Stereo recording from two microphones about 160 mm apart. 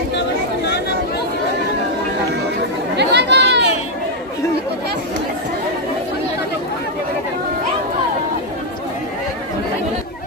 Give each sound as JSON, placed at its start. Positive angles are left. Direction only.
{"t": 3.0, "sound": "chatter", "side_deg": -90}